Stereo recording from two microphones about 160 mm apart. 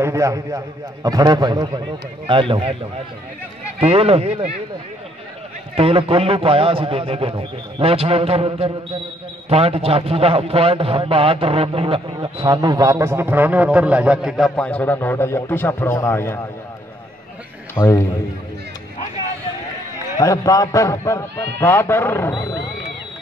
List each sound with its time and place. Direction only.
0.0 s a man's voice: 20° right (ahead or behind); by 2.8 s 35° right (ahead or behind)
3.8 s a man's voice: 40° right (ahead or behind)
5.8 s a man's voice: 35° right (ahead or behind); by 14.5 s centre (ahead or behind)
14.5 s a man's voice: 10° left (ahead or behind)
17.7 s a man's voice: 15° left (ahead or behind)
20.2 s a man's voice: 20° left (ahead or behind)